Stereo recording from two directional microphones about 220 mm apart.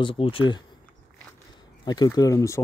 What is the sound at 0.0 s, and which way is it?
Speech, 25° left (ahead or behind).